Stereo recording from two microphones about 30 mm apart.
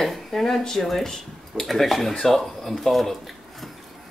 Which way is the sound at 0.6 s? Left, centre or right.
Centre.